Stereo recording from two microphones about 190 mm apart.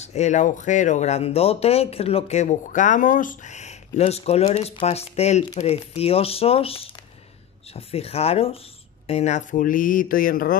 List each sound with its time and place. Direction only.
0.0 s speech: 35° left (ahead or behind)